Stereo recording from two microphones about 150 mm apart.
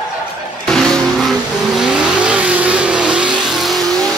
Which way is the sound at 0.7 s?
5° left (ahead or behind).